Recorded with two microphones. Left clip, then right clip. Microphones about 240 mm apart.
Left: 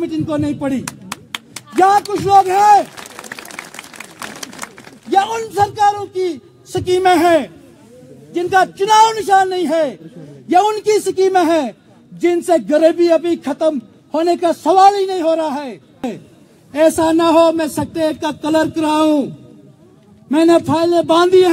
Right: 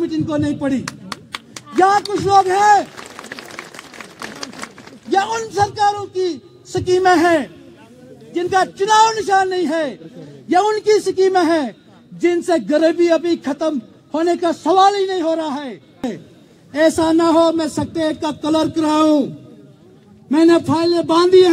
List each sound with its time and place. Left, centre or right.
0.0 s a man's voice: centre
0.8 s a sound: left
1.8 s a man's voice: centre
3.3 s a sound: left
5.1 s a man's voice: centre
20.2 s a man's voice: centre